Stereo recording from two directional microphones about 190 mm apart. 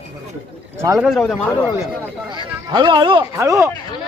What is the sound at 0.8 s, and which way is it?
Speech, 15° right (ahead or behind).